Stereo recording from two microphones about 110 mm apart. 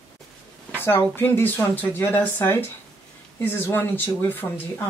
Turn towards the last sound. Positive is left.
turn(degrees=15)  # may be behind; listen again after turning